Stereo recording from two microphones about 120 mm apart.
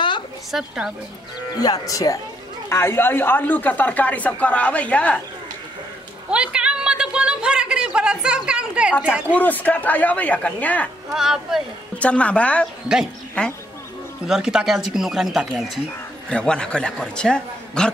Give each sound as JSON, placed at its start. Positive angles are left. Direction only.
{"t": 0.5, "sound": "speech", "side_deg": 0}
{"t": 1.6, "sound": "speech", "side_deg": 30}
{"t": 6.3, "sound": "a sound", "side_deg": -10}
{"t": 9.3, "sound": "speech", "side_deg": 15}
{"t": 11.1, "sound": "speech", "side_deg": -5}
{"t": 12.0, "sound": "speech", "side_deg": 10}
{"t": 14.2, "sound": "speech", "side_deg": -5}